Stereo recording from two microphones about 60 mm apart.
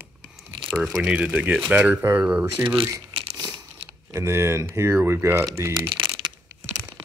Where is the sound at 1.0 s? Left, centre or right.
Right.